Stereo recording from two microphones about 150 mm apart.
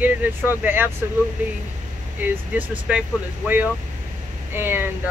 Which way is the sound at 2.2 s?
10° right (ahead or behind).